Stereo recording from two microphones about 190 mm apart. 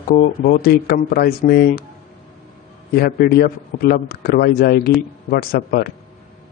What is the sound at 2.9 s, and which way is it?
Speech, 55° left (ahead or behind).